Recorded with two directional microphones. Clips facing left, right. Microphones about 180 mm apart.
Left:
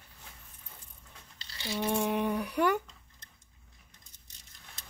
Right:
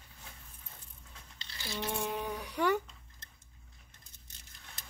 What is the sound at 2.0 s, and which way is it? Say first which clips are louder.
Speech: left 7 dB; 60° left (ahead or behind).